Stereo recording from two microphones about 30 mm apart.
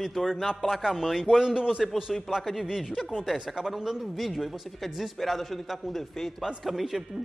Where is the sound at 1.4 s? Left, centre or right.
Right.